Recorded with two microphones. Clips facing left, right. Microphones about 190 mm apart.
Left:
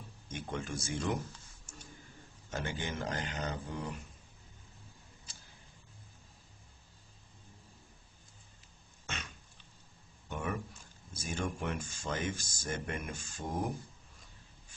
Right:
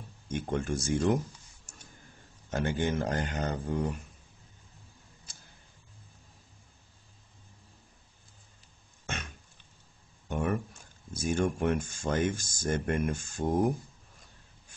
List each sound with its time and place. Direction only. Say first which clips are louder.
0.3 s speech: right 8 dB; 50° right (ahead or behind)
2.5 s speech: right 9 dB; 50° right (ahead or behind)
9.0 s a sound: right 5 dB; 50° right (ahead or behind)
10.2 s speech: right 7 dB; 50° right (ahead or behind)